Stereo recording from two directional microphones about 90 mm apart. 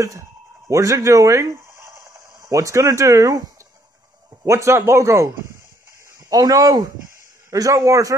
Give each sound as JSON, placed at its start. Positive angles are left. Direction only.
{"t": 0.0, "sound": "speech", "side_deg": -35}
{"t": 4.5, "sound": "speech", "side_deg": -30}
{"t": 6.2, "sound": "speech", "side_deg": -45}